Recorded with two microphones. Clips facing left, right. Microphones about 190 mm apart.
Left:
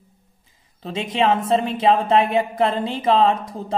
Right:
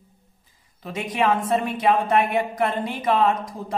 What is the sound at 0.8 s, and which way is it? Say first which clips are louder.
A woman's voice: left 3 dB; 25° left (ahead or behind).